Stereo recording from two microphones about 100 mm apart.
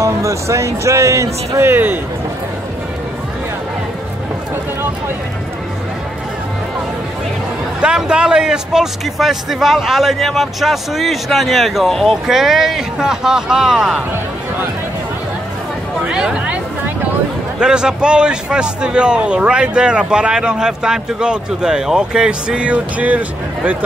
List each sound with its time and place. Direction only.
0.0 s speech: 30° right (ahead or behind)
7.8 s speech: 10° right (ahead or behind)
16.0 s a man's voice: 10° right (ahead or behind)
17.6 s a man's voice: 10° right (ahead or behind)